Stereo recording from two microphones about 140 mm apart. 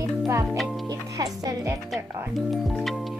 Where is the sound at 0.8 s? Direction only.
25° right (ahead or behind).